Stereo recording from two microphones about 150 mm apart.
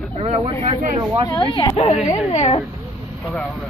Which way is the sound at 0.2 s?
40° right (ahead or behind).